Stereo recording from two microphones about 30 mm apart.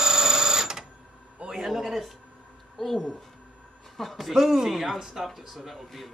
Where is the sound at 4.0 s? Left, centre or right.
Centre.